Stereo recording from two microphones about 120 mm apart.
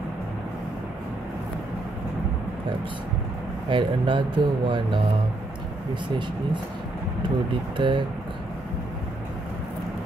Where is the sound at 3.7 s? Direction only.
45° right (ahead or behind).